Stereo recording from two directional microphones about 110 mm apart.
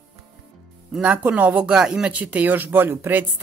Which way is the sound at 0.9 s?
10° right (ahead or behind).